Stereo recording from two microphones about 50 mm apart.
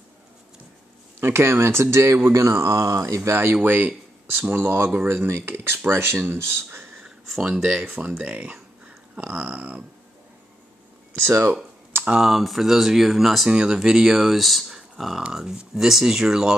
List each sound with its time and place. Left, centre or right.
1.2 s speech: right
2.3 s speech: right
3.3 s speech: right
3.5 s speech: right
7.5 s speech: centre
7.8 s speech: right
8.2 s speech: right
11.1 s speech: right
12.2 s speech: centre
13.5 s speech: centre